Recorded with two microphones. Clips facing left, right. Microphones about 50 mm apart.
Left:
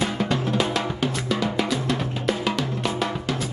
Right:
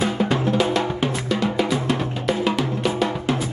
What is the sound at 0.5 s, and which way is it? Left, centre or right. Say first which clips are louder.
Music: right 4 dB; centre.